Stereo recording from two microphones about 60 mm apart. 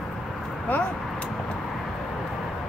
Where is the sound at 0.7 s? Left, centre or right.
Left.